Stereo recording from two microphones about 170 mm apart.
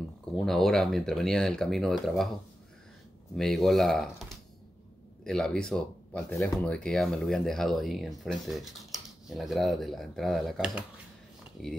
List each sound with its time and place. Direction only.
0.4 s speech: centre (ahead or behind)
3.3 s speech: centre (ahead or behind)